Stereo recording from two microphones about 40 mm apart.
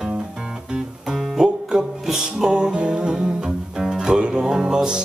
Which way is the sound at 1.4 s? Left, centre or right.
Centre.